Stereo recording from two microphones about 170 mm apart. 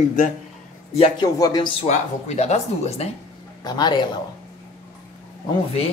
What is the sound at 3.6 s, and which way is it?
Speech, 25° left (ahead or behind).